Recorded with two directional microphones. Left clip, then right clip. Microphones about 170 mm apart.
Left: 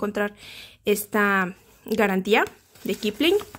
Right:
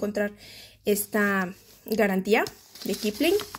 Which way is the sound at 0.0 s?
30° left (ahead or behind).